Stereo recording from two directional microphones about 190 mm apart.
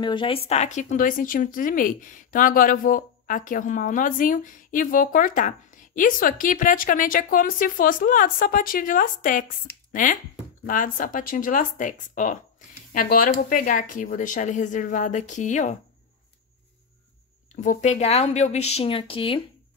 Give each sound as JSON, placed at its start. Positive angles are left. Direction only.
{"t": 0.0, "sound": "a woman's voice", "side_deg": 25}
{"t": 10.7, "sound": "a woman's voice", "side_deg": 45}
{"t": 17.6, "sound": "speech", "side_deg": 40}